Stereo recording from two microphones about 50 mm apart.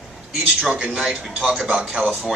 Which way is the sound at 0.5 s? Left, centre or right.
Centre.